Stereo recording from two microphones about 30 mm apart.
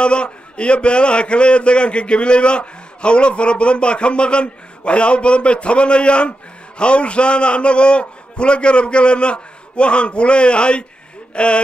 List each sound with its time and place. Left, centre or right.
0.0 s a man's voice: left